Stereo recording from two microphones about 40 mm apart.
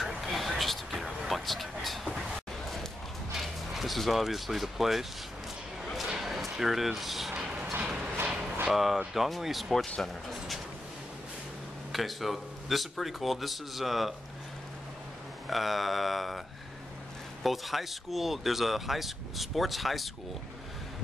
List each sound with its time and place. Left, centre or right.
0.3 s vehicle: centre
3.3 s speech: centre
5.9 s a sound: centre
7.8 s a sound: right
8.6 s speech: centre
11.9 s speech: centre
15.5 s speech: centre